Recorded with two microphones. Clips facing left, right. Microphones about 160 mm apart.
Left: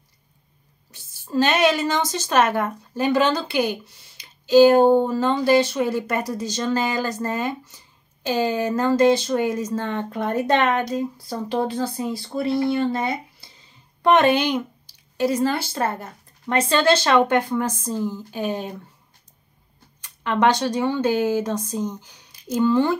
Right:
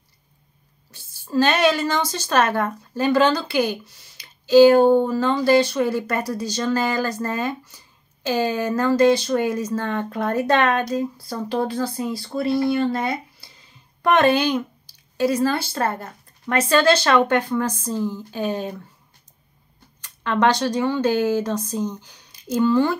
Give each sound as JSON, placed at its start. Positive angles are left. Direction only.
{"t": 0.9, "sound": "a woman's voice", "side_deg": 20}
{"t": 20.2, "sound": "a woman's voice", "side_deg": 20}